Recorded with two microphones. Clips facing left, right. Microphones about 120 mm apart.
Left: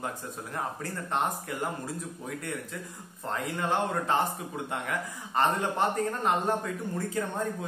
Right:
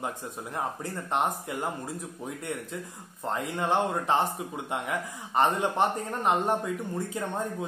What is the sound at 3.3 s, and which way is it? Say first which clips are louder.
Speech: right 2 dB; 20° right (ahead or behind).